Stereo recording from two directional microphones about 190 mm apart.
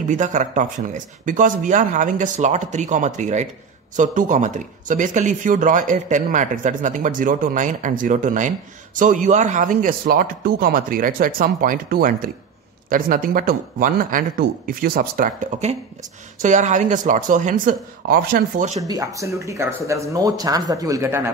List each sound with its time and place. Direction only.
0.1 s speech: 40° right (ahead or behind)
18.8 s speech: 20° right (ahead or behind)